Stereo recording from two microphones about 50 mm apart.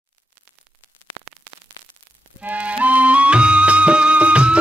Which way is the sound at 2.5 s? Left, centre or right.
Right.